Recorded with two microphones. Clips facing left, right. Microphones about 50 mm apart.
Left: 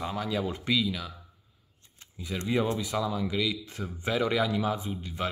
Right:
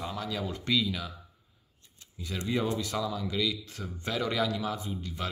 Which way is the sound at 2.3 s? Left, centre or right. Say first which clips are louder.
Left 2 dB; centre.